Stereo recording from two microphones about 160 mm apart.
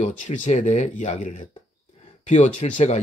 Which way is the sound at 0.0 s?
50° left (ahead or behind).